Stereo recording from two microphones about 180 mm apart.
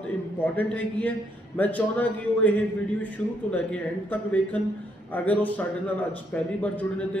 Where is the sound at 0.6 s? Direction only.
10° left (ahead or behind).